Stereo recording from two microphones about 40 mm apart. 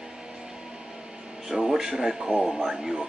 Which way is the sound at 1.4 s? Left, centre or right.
Centre.